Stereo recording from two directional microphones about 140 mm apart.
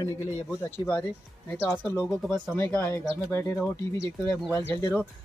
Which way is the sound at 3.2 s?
20° left (ahead or behind).